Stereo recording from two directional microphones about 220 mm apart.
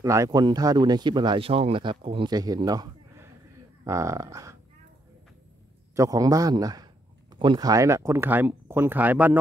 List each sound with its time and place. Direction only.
0.0 s speech: 15° right (ahead or behind)
5.9 s speech: 15° right (ahead or behind)